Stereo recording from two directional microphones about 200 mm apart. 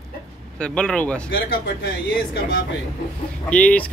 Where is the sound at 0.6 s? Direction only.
5° left (ahead or behind).